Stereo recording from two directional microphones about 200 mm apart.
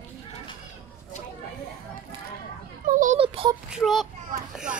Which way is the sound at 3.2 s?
25° right (ahead or behind).